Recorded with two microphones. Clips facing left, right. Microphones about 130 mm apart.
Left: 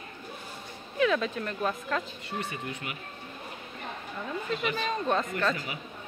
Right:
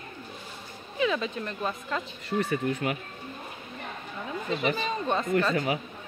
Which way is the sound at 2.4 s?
40° right (ahead or behind).